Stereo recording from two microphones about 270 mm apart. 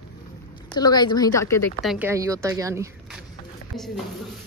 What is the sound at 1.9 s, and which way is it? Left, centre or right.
A woman's voice, centre.